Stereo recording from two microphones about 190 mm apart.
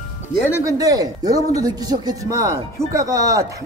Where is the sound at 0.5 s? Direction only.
15° right (ahead or behind).